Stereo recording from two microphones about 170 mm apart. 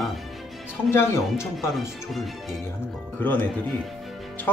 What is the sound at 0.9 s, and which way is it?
Speech, 15° left (ahead or behind).